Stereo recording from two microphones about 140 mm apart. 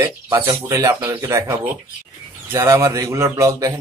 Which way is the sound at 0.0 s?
25° right (ahead or behind).